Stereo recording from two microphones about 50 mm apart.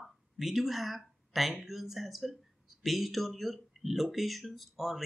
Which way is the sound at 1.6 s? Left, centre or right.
Centre.